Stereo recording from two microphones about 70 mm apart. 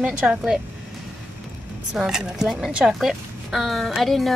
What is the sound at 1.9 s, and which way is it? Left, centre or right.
Speech, centre.